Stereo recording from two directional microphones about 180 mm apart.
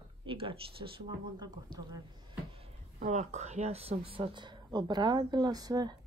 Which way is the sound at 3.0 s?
40° right (ahead or behind).